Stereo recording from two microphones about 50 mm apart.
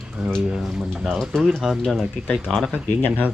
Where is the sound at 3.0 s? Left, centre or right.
Left.